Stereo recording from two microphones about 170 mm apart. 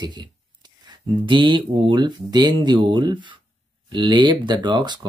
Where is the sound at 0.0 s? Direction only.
25° right (ahead or behind).